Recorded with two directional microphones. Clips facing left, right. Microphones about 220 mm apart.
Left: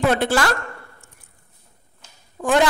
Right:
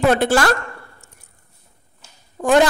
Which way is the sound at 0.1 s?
45° right (ahead or behind).